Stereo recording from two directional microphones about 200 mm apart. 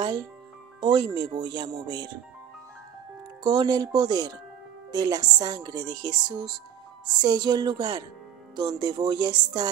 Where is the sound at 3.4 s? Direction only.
20° right (ahead or behind).